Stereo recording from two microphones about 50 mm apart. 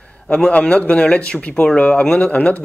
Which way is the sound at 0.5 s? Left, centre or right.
Left.